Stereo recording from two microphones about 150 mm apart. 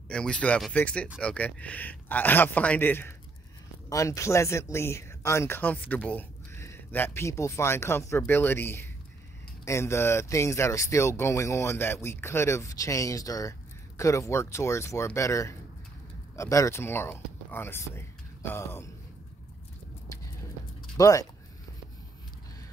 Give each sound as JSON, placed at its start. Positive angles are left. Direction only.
{"t": 0.1, "sound": "speech", "side_deg": 5}
{"t": 21.0, "sound": "speech", "side_deg": 20}